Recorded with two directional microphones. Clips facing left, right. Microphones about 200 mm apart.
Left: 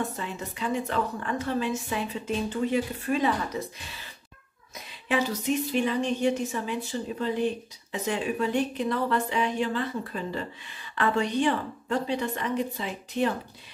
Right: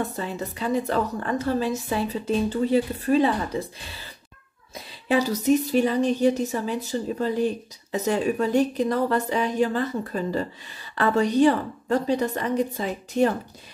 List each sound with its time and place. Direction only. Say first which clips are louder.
0.0 s a woman's voice: right 4 dB; 35° right (ahead or behind)